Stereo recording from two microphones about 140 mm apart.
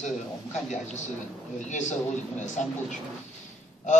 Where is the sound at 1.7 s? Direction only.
60° left (ahead or behind).